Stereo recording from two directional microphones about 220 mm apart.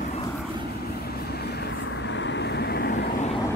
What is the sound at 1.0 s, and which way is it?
Vehicle, 45° left (ahead or behind).